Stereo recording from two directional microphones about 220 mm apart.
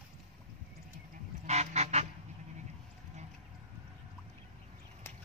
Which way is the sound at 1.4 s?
30° right (ahead or behind).